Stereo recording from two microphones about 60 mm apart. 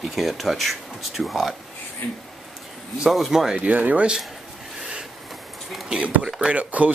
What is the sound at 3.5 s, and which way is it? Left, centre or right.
Speech, right.